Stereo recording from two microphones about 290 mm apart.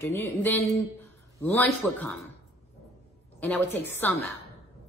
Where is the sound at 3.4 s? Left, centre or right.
Centre.